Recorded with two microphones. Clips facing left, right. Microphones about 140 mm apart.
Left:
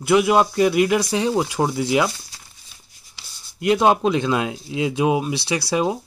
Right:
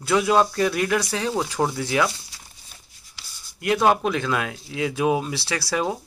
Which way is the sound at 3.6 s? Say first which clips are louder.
Left 3 dB; 20° left (ahead or behind).